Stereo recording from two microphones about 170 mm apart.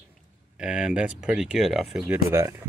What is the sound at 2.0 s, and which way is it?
Speech, 15° right (ahead or behind).